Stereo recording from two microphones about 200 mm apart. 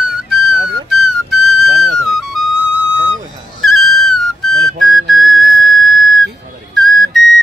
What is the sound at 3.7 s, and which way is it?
Whistle, centre (ahead or behind).